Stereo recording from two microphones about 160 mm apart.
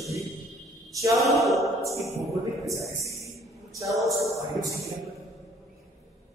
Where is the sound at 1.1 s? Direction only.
Centre (ahead or behind).